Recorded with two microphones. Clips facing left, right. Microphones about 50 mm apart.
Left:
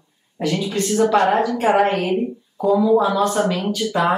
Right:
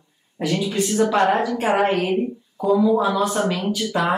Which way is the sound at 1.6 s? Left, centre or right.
Centre.